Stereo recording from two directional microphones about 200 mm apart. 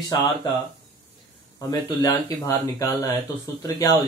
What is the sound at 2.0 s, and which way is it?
Speech, 15° left (ahead or behind).